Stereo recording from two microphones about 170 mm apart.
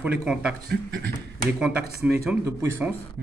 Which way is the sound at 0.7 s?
65° right (ahead or behind).